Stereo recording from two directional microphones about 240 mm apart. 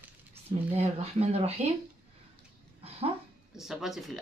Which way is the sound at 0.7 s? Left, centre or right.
Right.